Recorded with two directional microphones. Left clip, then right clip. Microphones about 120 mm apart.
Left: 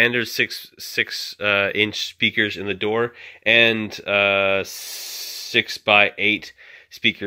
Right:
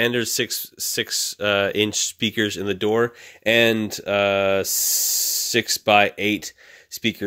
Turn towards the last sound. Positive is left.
turn(degrees=-60)  # may be behind; listen again after turning